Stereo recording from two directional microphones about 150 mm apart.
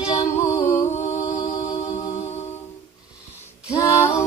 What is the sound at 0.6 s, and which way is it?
Music, 15° left (ahead or behind).